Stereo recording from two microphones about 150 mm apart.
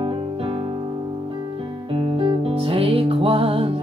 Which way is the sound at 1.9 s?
40° right (ahead or behind).